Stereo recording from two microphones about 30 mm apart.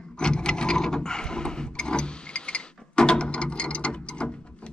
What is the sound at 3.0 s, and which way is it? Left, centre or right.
Ratchet, left.